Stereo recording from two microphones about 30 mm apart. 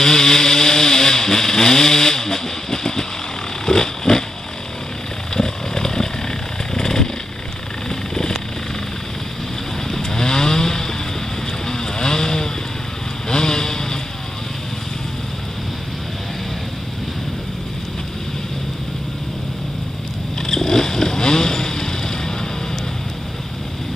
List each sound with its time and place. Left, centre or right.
0.0 s chainsaw: centre
3.6 s pig: centre
5.3 s chainsaw: centre
7.9 s vehicle: left
9.8 s chainsaw: centre
13.3 s vehicle: left
20.4 s vehicle: centre